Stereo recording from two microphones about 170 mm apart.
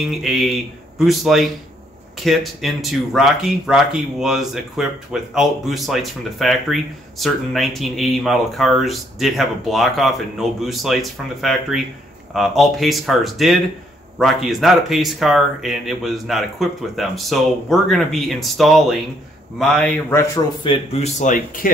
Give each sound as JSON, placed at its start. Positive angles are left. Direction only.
{"t": 0.0, "sound": "speech", "side_deg": 0}
{"t": 20.6, "sound": "speech", "side_deg": 35}